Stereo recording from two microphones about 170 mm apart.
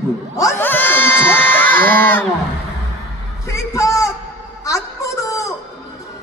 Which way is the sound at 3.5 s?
15° left (ahead or behind).